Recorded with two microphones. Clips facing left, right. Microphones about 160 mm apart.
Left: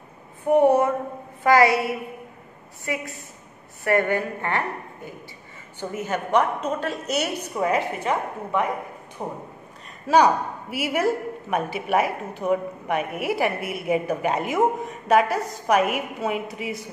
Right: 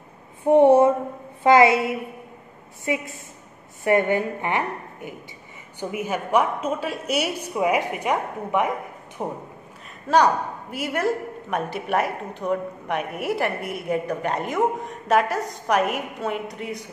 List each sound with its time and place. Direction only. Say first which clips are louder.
0.5 s a woman's voice: right 3 dB; 25° right (ahead or behind)
10.0 s a woman's voice: left 1 dB; 5° left (ahead or behind)